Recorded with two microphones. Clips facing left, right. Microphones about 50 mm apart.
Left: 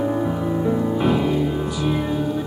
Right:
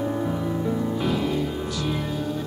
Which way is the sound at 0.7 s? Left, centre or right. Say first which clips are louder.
Left 6 dB; centre.